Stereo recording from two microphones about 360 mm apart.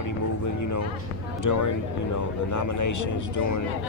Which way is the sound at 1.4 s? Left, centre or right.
Left.